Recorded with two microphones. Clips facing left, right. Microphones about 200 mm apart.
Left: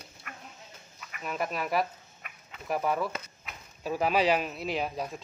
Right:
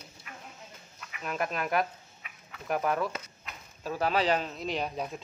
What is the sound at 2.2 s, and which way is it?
Fowl, 50° left (ahead or behind).